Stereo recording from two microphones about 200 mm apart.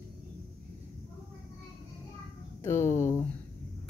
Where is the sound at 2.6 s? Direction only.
15° left (ahead or behind).